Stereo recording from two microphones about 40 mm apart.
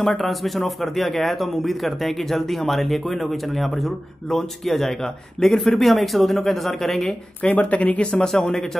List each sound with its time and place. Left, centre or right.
0.0 s a man's voice: centre
7.5 s speech: left
8.2 s speech: centre